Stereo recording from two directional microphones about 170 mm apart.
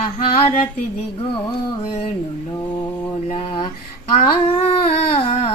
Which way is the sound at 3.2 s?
35° left (ahead or behind).